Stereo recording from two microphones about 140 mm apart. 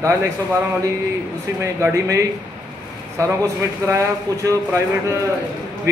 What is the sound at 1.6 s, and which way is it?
Speech, 20° right (ahead or behind).